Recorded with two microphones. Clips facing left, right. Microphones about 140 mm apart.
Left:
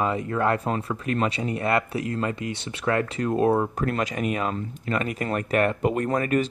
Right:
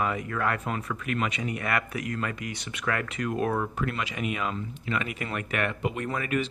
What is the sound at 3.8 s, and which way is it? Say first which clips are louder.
Speech: left 5 dB; 40° left (ahead or behind).